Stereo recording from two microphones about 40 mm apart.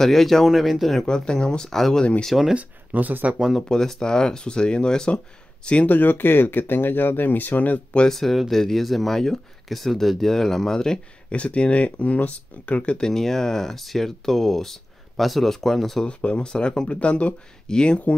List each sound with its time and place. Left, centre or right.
0.0 s speech: centre
0.5 s speech: centre
1.0 s speech: left
1.7 s speech: centre
2.0 s speech: left
2.5 s speech: right
3.5 s speech: centre
5.9 s speech: left
8.1 s speech: centre
11.2 s speech: left
13.0 s speech: centre
16.1 s speech: left